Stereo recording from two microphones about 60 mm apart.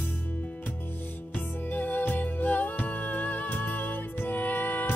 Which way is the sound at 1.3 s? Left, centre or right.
Left.